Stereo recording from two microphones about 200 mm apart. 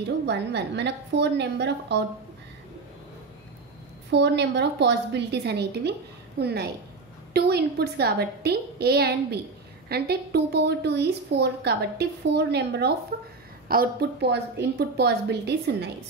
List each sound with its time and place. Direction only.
0.3 s a woman's voice: 60° right (ahead or behind)
4.1 s a woman's voice: 60° right (ahead or behind)